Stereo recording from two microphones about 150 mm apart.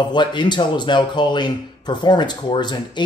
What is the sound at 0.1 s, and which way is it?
Speech, 30° left (ahead or behind).